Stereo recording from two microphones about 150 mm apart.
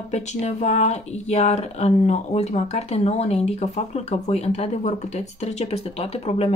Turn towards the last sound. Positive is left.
turn(degrees=40)  # may be behind; listen again after turning